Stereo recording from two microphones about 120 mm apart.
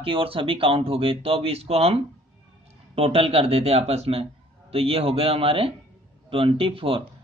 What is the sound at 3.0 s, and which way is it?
A man's voice, 55° right (ahead or behind).